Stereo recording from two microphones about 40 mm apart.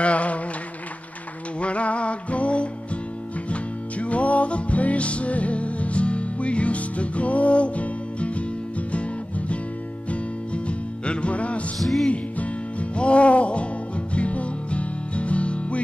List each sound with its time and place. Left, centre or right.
0.0 s a sound: left
1.6 s music: left
11.8 s music: centre
12.9 s music: left